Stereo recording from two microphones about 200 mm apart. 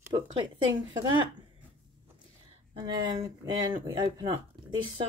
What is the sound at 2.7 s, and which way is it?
Speech, 20° right (ahead or behind).